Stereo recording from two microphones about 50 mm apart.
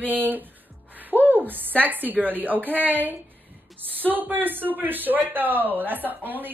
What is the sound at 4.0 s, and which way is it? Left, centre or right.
Female singing, right.